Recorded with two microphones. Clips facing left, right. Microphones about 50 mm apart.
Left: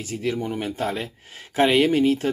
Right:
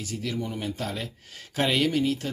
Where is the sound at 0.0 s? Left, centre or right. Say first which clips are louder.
Left 5 dB; left.